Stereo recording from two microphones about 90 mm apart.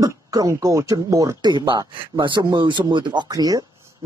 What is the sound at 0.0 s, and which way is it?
Speech, 40° right (ahead or behind).